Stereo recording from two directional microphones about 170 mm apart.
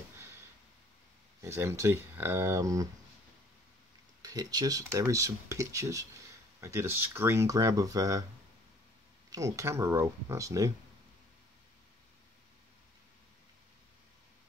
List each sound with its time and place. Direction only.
1.4 s speech: 15° right (ahead or behind)
4.2 s speech: 20° right (ahead or behind)
9.3 s speech: 20° right (ahead or behind)